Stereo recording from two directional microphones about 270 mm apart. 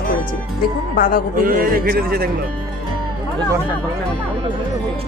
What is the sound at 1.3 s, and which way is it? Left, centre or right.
Speech, right.